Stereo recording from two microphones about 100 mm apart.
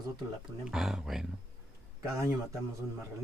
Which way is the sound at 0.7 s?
5° right (ahead or behind).